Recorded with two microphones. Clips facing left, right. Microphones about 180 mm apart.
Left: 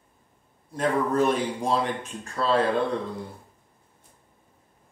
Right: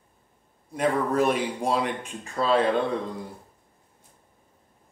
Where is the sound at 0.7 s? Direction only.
10° right (ahead or behind).